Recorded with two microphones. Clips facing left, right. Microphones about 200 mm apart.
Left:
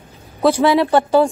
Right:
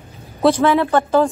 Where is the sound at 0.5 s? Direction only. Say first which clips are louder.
Left 1 dB; 10° left (ahead or behind).